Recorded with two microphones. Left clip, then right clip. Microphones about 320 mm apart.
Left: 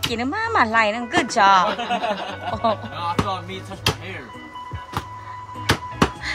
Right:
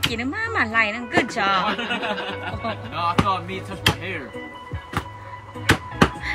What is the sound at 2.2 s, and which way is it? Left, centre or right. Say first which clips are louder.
Speech: left 6 dB; left.